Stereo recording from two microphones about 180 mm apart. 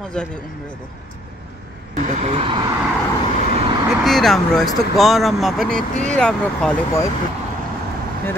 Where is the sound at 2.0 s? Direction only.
40° right (ahead or behind).